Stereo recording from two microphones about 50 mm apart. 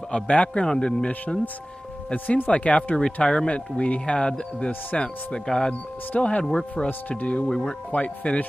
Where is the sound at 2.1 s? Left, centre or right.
Left; by 6.8 s centre.